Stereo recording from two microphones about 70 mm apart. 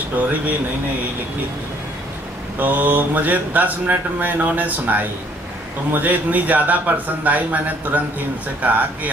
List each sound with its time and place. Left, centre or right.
2.6 s speech: right